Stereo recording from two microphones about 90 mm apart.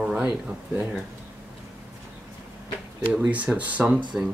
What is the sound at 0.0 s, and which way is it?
Speech, 10° right (ahead or behind).